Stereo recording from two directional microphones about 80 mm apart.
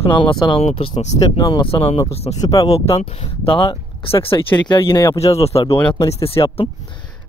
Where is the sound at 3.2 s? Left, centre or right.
Left.